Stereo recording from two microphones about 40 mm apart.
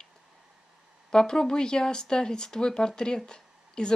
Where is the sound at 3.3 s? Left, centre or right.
Left.